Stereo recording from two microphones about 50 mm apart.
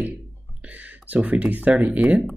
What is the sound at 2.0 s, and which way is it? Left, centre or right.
Speech, centre.